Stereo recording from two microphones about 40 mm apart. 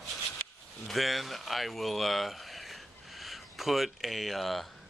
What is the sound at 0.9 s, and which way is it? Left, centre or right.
Speech, centre.